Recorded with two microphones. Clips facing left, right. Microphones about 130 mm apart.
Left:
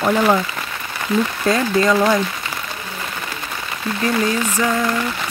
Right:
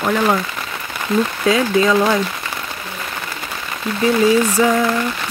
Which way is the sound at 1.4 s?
5° right (ahead or behind).